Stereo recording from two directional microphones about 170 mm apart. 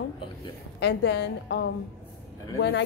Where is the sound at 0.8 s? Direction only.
85° left.